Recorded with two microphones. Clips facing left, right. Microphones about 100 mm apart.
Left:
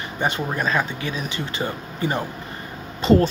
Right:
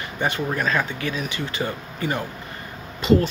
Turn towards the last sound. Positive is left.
turn(degrees=35)  # may be behind; listen again after turning